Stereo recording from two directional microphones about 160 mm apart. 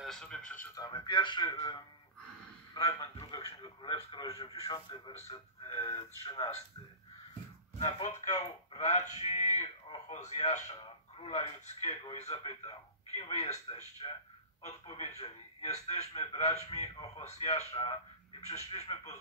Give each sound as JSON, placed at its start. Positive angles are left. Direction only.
{"t": 0.0, "sound": "speech", "side_deg": 5}
{"t": 0.7, "sound": "a man's voice", "side_deg": 25}
{"t": 7.8, "sound": "speech", "side_deg": 45}